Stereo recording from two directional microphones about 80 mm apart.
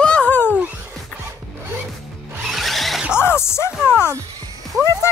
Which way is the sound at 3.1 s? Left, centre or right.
Left.